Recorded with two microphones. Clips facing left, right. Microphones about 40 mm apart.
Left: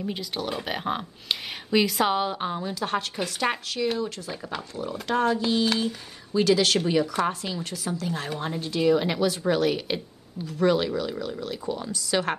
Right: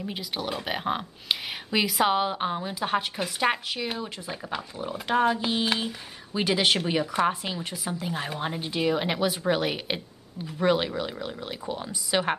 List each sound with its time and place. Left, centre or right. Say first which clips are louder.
0.0 s speech: left 2 dB; centre
4.7 s speech: right 1 dB; centre